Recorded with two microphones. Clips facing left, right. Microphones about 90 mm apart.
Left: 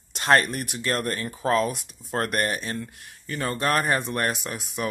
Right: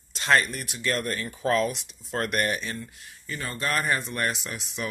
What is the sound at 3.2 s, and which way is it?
Speech, 45° left (ahead or behind).